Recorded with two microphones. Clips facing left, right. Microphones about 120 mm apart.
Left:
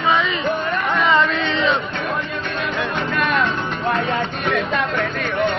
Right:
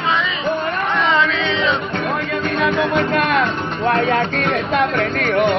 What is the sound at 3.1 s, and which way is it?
Speech, 60° right (ahead or behind).